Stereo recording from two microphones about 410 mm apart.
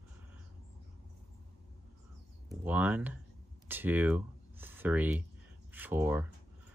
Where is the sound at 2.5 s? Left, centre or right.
Centre.